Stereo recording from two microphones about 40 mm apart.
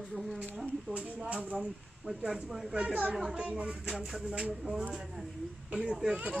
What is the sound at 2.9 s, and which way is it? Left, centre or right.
Speech, right.